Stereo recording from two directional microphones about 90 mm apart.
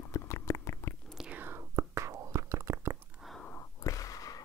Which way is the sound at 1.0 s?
5° right (ahead or behind).